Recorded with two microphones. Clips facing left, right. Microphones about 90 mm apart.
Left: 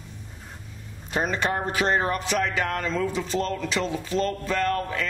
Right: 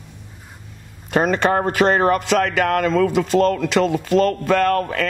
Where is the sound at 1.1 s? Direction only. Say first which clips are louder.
Right 8 dB; 70° right (ahead or behind).